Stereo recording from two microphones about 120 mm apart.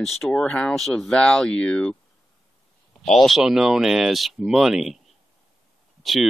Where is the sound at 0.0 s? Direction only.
Centre (ahead or behind).